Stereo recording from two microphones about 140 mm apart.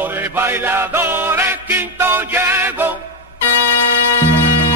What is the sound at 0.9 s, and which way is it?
Music, 15° right (ahead or behind).